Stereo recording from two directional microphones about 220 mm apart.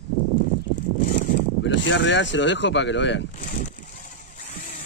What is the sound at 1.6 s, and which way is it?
Speech, 55° left (ahead or behind).